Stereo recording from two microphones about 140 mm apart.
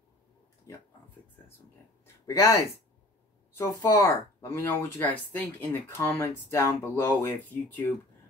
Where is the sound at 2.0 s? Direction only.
20° left (ahead or behind).